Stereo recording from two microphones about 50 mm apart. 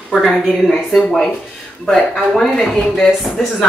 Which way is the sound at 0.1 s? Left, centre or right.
Centre.